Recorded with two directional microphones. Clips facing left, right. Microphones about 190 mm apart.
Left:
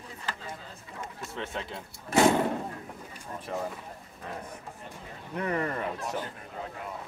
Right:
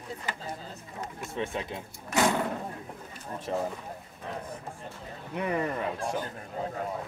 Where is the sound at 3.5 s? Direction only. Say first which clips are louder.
Right 4 dB; 25° right (ahead or behind).